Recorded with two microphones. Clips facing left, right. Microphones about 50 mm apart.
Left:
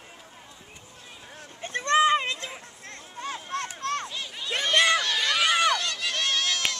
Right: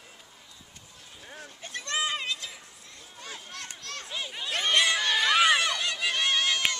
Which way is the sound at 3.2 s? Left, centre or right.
Left.